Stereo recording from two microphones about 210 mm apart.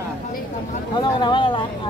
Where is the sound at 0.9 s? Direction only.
20° left (ahead or behind).